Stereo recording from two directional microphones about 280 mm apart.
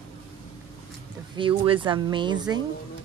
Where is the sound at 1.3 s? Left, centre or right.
Centre.